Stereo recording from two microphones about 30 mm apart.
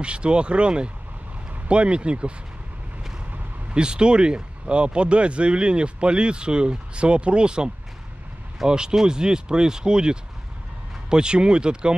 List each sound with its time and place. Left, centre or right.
0.0 s speech: right
3.7 s speech: right